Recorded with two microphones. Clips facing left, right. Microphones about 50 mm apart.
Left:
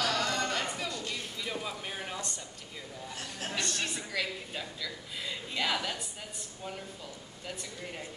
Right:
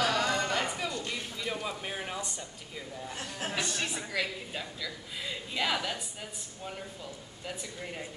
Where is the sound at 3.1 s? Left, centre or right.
Right.